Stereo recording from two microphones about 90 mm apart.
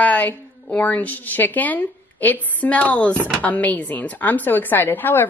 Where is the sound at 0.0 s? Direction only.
20° left (ahead or behind).